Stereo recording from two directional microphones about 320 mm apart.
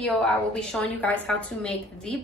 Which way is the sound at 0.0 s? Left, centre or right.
Centre.